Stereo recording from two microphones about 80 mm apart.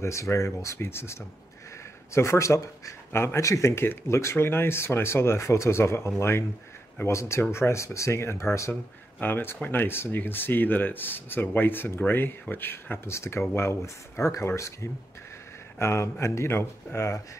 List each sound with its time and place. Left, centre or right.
0.0 s speech: left
9.2 s speech: left